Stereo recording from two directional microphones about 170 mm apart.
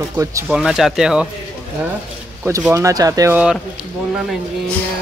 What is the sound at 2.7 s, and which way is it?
Speech, 20° right (ahead or behind).